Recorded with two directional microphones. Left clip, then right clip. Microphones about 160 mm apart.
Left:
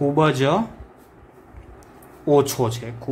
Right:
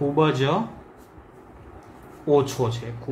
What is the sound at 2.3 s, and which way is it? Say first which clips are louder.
Speech: left 3 dB; 45° left (ahead or behind).